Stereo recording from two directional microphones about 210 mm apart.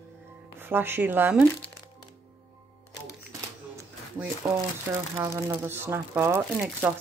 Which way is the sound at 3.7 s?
15° right (ahead or behind).